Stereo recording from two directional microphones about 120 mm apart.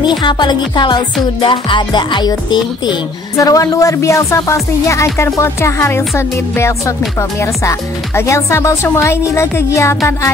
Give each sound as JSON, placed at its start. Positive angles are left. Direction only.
{"t": 0.0, "sound": "music", "side_deg": 40}
{"t": 3.3, "sound": "speech", "side_deg": 30}